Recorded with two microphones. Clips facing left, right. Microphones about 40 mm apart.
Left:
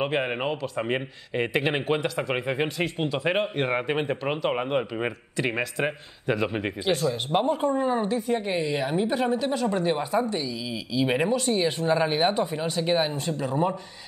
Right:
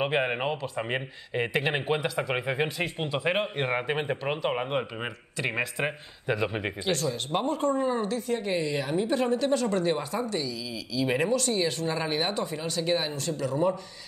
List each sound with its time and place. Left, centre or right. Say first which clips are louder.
0.0 s speech: left 1 dB; centre; by 13.7 s left